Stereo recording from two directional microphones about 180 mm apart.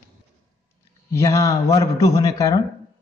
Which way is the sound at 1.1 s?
15° left (ahead or behind).